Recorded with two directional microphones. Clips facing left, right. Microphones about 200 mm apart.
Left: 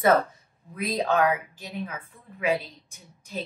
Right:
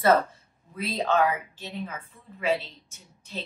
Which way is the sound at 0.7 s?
15° left (ahead or behind).